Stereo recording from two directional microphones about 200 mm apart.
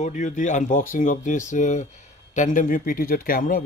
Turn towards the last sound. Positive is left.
turn(degrees=45)  # may be behind; listen again after turning